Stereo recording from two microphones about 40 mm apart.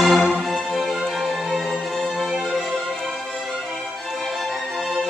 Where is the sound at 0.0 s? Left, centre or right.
Centre.